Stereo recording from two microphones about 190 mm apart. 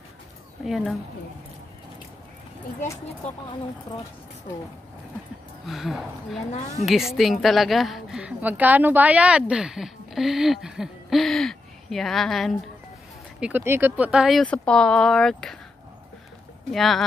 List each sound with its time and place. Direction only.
0.7 s a woman's voice: centre (ahead or behind)
5.7 s a woman's voice: centre (ahead or behind)
6.5 s a woman's voice: 35° left (ahead or behind)
6.9 s a woman's voice: centre (ahead or behind)
13.4 s a woman's voice: 10° right (ahead or behind)
16.7 s a woman's voice: centre (ahead or behind)